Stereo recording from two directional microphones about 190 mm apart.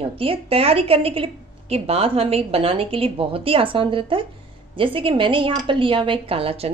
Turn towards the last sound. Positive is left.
turn(degrees=-30)  # may be behind; listen again after turning